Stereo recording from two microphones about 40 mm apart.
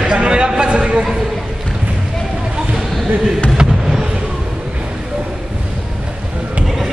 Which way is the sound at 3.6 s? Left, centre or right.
Centre.